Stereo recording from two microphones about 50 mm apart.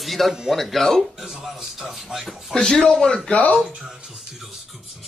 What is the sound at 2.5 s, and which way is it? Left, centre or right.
Speech, centre.